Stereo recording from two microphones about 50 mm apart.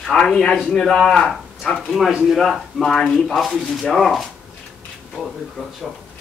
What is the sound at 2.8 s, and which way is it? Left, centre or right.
Speech, centre.